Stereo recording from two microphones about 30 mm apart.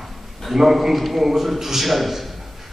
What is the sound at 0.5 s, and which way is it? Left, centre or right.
A man's voice, centre.